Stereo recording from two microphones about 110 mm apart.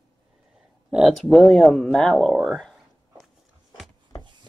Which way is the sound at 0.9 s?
Centre (ahead or behind).